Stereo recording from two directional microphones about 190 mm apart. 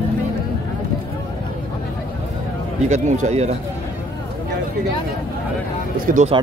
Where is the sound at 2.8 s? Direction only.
40° right (ahead or behind).